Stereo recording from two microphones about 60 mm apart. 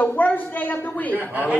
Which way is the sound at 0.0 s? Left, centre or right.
Left.